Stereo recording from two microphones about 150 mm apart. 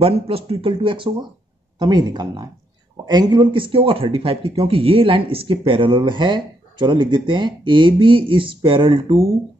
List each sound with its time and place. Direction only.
0.0 s speech: 40° right (ahead or behind)